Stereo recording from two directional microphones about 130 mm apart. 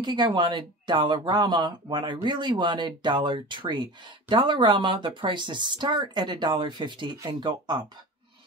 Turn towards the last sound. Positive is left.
turn(degrees=-35)  # may be behind; listen again after turning